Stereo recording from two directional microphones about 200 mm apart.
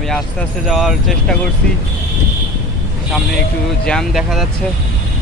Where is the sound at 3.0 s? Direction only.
5° left (ahead or behind).